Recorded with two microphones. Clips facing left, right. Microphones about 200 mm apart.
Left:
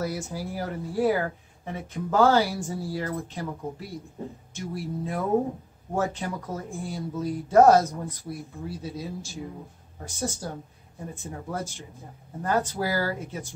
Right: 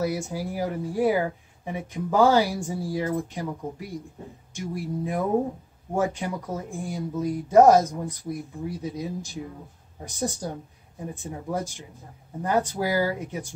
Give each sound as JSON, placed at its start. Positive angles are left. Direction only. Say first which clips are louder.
{"t": 0.0, "sound": "speech", "louder": "right 3 dB", "side_deg": -15}